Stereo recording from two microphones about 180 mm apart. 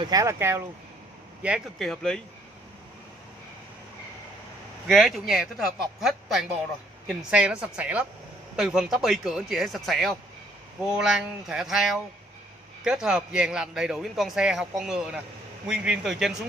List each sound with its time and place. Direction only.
0.0 s speech: 20° right (ahead or behind)
1.4 s a man's voice: centre (ahead or behind)
4.8 s a man's voice: centre (ahead or behind)